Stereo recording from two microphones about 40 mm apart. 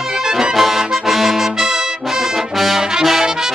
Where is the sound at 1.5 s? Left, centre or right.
Centre.